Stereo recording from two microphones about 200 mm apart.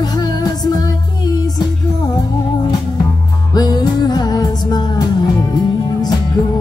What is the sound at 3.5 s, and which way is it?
Music, 20° left (ahead or behind).